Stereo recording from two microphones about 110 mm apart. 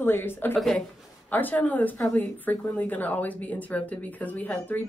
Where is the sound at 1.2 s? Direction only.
15° left (ahead or behind).